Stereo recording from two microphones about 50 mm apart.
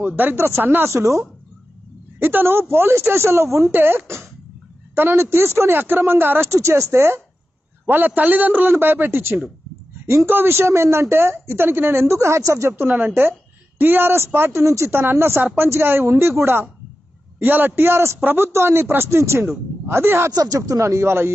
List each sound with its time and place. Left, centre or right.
0.0 s a man's voice: right
0.4 s speech: right
0.8 s speech: right
2.1 s a woman's voice: right
6.5 s speech: right
7.8 s a man's voice: right
8.7 s a woman's voice: right
10.0 s speech: right
12.7 s a woman's voice: right
14.9 s a woman's voice: right
17.4 s a woman's voice: right
18.2 s speech: right
19.9 s speech: right
20.8 s speech: right